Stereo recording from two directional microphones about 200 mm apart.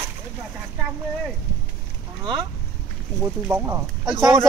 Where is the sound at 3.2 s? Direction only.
10° right (ahead or behind).